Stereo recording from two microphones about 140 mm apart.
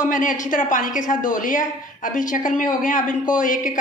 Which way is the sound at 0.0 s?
70° left (ahead or behind).